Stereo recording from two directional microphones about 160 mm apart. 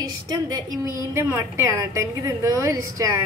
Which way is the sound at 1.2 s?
15° right (ahead or behind).